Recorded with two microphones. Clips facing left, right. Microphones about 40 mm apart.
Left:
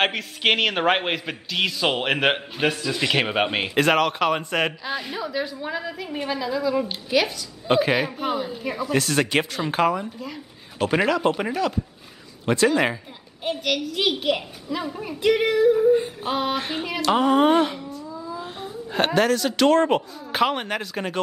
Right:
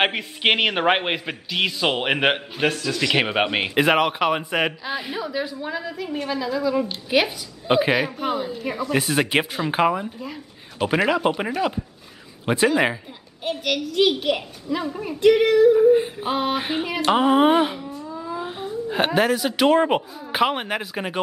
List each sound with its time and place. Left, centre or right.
0.0 s a man's voice: centre
3.2 s a man's voice: centre
7.1 s a child's voice: centre
8.9 s a man's voice: centre
13.4 s a child's voice: centre
15.9 s a man's voice: centre
18.1 s humming: right
18.6 s a man's voice: centre